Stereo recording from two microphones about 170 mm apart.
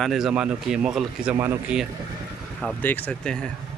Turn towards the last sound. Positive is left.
turn(degrees=5)  # may be behind; listen again after turning